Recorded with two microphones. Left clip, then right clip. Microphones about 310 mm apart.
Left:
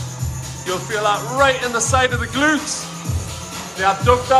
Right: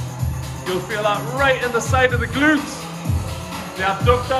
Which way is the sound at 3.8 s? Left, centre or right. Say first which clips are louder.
Left 3 dB; centre.